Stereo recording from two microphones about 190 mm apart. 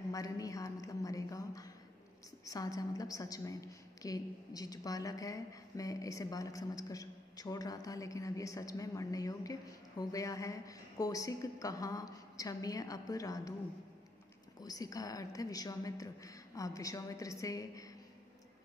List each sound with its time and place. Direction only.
0.1 s a woman's voice: 20° left (ahead or behind)
14.6 s a woman's voice: 20° left (ahead or behind)